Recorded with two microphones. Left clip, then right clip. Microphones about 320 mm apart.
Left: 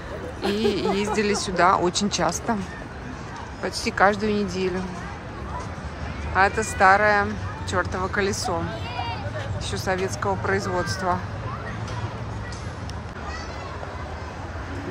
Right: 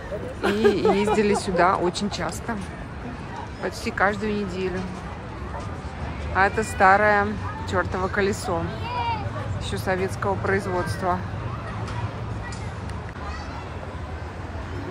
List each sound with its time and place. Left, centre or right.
0.4 s speech: centre
3.6 s speech: centre
6.3 s speech: centre
8.9 s a sound: centre
9.7 s speech: centre